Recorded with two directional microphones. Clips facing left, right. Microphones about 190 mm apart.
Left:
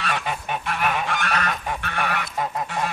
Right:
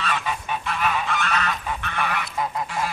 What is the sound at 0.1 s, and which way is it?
Goose, 50° left (ahead or behind).